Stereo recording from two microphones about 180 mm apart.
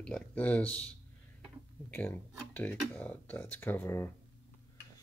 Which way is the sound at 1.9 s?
10° left (ahead or behind).